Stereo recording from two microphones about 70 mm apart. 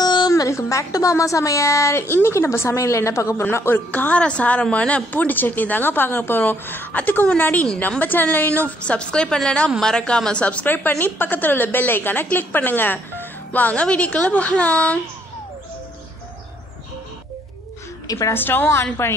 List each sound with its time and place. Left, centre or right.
0.0 s a sound: left
0.3 s a woman's voice: left
3.5 s a woman's voice: left
3.9 s a woman's voice: left
18.0 s a woman's voice: left
18.3 s a woman's voice: left